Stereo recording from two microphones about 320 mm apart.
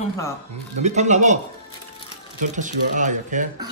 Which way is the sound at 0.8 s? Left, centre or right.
Right.